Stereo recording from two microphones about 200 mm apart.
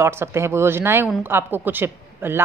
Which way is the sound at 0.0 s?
10° right (ahead or behind).